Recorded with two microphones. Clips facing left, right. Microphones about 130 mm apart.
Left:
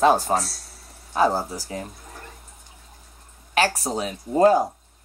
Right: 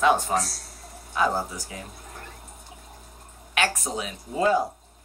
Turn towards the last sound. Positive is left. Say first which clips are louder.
# left 6 dB
turn(degrees=45)  # may be behind; listen again after turning